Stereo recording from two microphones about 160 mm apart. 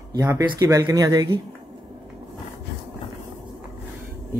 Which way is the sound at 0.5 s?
20° right (ahead or behind).